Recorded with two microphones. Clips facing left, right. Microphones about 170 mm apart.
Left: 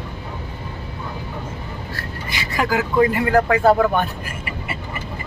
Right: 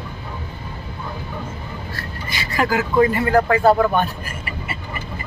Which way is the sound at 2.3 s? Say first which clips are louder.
Right 1 dB; 15° left (ahead or behind).